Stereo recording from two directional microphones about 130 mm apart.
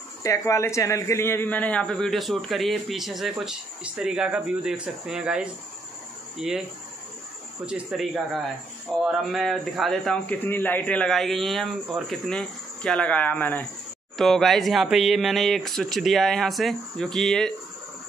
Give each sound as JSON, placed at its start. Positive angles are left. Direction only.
{"t": 0.2, "sound": "a man's voice", "side_deg": 25}
{"t": 7.6, "sound": "a man's voice", "side_deg": -5}
{"t": 10.4, "sound": "a man's voice", "side_deg": 15}
{"t": 14.1, "sound": "a man's voice", "side_deg": 0}